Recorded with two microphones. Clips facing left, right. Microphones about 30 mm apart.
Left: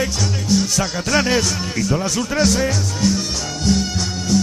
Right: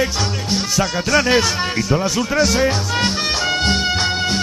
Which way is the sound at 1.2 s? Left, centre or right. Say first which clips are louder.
Right 3 dB; right.